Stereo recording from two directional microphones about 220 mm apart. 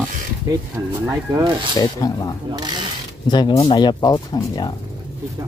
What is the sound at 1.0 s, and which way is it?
Speech, 15° right (ahead or behind).